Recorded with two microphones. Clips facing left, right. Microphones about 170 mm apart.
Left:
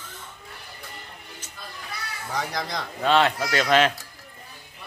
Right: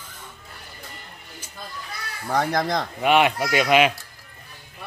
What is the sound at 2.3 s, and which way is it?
Speech, 50° right (ahead or behind).